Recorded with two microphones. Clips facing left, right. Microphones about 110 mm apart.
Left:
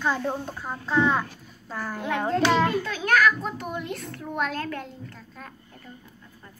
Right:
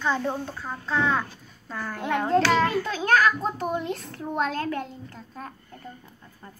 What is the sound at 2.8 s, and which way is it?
A child's voice, 30° right (ahead or behind).